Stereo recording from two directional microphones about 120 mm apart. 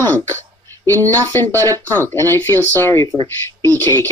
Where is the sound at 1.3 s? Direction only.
20° left (ahead or behind).